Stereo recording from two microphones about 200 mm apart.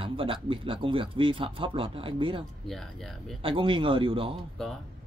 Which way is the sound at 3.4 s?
25° right (ahead or behind).